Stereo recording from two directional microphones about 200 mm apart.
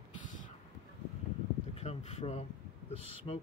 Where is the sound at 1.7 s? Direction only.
30° left (ahead or behind).